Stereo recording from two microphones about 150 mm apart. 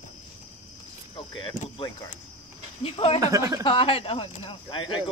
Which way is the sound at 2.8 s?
40° left (ahead or behind).